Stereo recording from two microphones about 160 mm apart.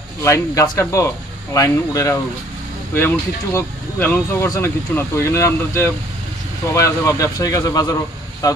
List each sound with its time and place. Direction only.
0.2 s speech: 20° left (ahead or behind)